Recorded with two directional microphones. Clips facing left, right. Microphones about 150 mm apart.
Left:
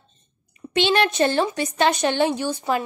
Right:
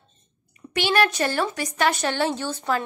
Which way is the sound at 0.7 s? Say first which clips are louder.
Left 2 dB; 25° left (ahead or behind).